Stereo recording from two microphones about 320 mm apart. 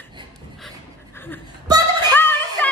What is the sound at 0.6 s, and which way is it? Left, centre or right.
Pant, centre.